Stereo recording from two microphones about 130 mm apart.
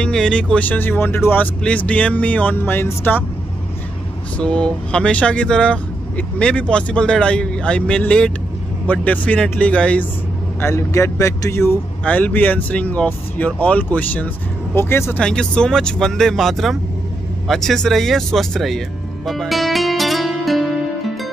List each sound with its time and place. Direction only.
0.0 s speech: 5° left (ahead or behind)
4.4 s speech: 10° left (ahead or behind)
10.6 s speech: 20° left (ahead or behind)
15.1 s speech: 5° left (ahead or behind)
19.2 s music: centre (ahead or behind)